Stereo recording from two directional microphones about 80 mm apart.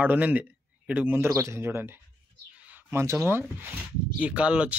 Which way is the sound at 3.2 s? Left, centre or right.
Right.